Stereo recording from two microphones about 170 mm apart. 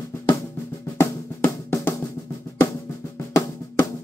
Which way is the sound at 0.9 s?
15° left (ahead or behind).